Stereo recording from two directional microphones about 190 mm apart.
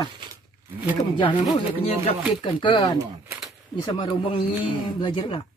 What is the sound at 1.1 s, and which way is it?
A man's voice, 20° left (ahead or behind).